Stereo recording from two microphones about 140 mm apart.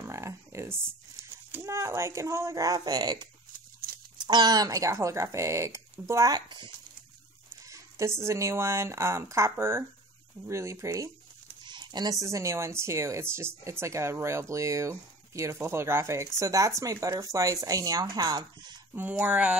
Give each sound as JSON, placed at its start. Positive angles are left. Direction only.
{"t": 0.0, "sound": "a sound", "side_deg": -20}
{"t": 1.5, "sound": "speech", "side_deg": -20}
{"t": 7.6, "sound": "a sound", "side_deg": -20}
{"t": 8.2, "sound": "speech", "side_deg": -20}
{"t": 11.6, "sound": "speech", "side_deg": -35}
{"t": 18.9, "sound": "speech", "side_deg": -10}